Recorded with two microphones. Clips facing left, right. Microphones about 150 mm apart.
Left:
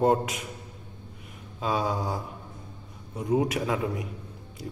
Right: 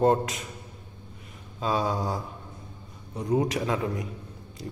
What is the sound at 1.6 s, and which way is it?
A man's voice, 5° left (ahead or behind).